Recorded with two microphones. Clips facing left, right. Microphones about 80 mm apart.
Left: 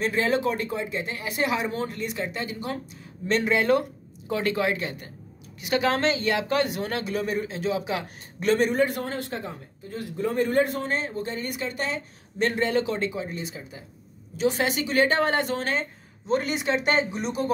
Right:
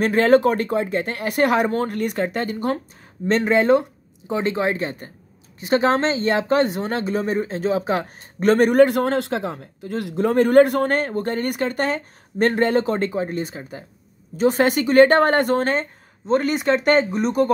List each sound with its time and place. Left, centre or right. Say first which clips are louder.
0.0 s speech: right 9 dB; right
3.3 s speech: right 5 dB; right